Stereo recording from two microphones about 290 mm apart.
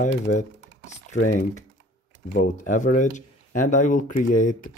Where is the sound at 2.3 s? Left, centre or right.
Left.